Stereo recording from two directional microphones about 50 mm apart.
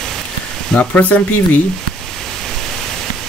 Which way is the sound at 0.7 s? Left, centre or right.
Left.